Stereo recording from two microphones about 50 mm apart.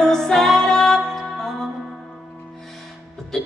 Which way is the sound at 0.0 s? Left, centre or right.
Centre.